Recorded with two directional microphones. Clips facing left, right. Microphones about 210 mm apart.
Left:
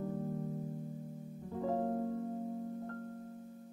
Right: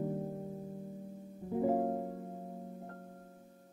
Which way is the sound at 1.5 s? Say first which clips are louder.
Right 4 dB; 15° right (ahead or behind).